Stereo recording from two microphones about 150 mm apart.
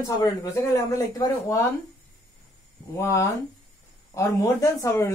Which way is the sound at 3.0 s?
20° left (ahead or behind).